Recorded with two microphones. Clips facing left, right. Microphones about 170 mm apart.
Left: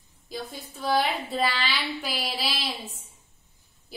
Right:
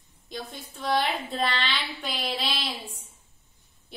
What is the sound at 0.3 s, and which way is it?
A woman's voice, centre (ahead or behind).